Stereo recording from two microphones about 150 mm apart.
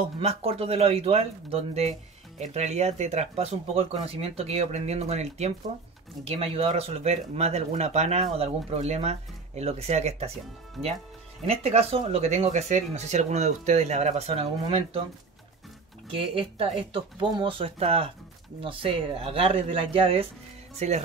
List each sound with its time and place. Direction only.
0.2 s speech: 45° right (ahead or behind)
11.4 s speech: 45° right (ahead or behind)
16.1 s speech: 35° right (ahead or behind)
20.8 s speech: 50° right (ahead or behind)